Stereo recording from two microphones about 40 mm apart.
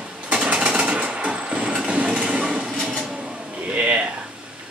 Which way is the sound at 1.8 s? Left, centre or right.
Right.